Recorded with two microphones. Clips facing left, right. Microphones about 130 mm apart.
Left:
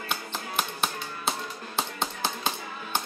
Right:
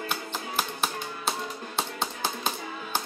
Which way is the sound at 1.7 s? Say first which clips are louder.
Left 1 dB; centre (ahead or behind).